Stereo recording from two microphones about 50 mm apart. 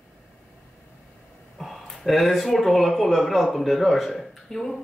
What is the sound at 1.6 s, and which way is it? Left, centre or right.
Speech, centre.